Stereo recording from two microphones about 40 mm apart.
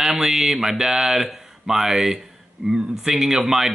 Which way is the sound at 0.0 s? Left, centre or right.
Centre.